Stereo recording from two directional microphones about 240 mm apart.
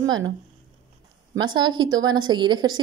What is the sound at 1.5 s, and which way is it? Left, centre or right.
A woman's voice, centre.